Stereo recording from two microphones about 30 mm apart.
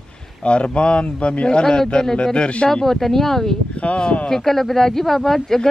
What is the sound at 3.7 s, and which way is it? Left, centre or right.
Speech, left.